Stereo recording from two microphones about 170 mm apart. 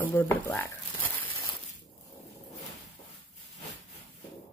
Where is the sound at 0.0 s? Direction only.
15° left (ahead or behind).